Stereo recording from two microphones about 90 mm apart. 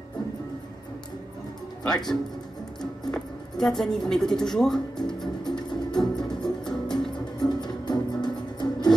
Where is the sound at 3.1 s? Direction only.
5° left (ahead or behind).